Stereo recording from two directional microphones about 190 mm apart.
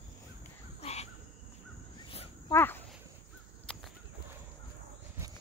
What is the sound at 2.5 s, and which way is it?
Speech, 10° left (ahead or behind).